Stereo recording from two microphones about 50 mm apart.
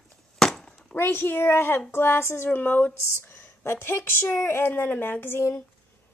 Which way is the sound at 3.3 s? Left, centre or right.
Left.